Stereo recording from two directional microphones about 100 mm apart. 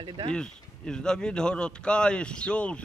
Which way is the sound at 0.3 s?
10° left (ahead or behind).